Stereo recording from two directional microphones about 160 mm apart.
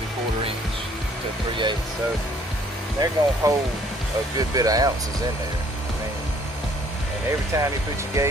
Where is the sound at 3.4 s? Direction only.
20° right (ahead or behind).